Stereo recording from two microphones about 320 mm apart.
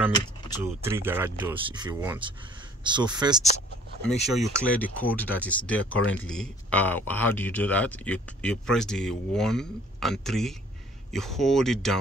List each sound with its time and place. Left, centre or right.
0.8 s speech: centre
4.3 s speech: centre
5.8 s speech: left
6.1 s speech: centre